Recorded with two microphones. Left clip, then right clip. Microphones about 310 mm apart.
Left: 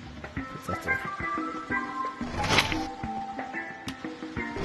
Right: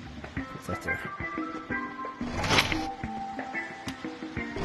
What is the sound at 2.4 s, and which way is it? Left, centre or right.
Music, centre.